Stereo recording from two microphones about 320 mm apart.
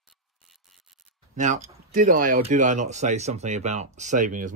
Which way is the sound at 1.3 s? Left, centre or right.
Right.